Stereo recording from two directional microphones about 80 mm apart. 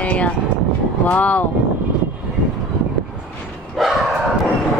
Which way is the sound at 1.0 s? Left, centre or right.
Centre.